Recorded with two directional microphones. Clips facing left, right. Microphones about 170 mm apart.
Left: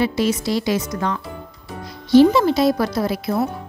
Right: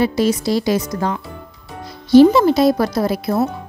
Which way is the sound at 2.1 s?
45° right (ahead or behind).